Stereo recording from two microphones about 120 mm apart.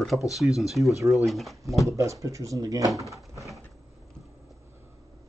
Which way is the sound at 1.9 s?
25° right (ahead or behind).